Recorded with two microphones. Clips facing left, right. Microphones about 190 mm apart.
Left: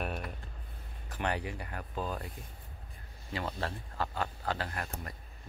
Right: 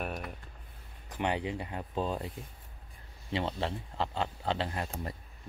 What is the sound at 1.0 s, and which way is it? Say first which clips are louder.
Speech: right 3 dB; 20° right (ahead or behind).